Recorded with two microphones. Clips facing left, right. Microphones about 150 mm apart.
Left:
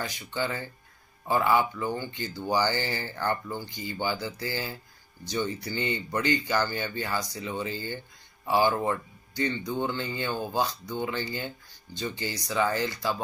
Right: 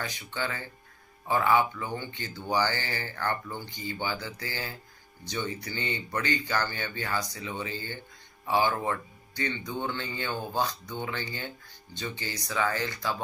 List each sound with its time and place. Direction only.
1.2 s speech: 5° left (ahead or behind)